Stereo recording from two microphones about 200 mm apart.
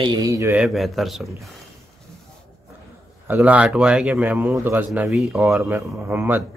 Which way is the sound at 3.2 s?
10° right (ahead or behind).